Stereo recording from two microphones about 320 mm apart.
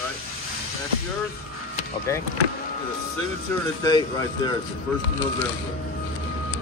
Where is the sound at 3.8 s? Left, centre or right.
Centre.